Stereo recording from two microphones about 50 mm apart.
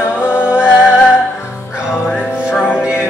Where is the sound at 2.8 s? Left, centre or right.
Centre.